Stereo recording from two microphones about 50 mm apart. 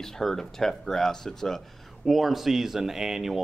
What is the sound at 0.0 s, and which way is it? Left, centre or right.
Speech, centre.